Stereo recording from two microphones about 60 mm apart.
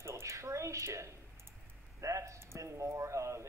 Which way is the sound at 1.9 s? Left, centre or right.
Right.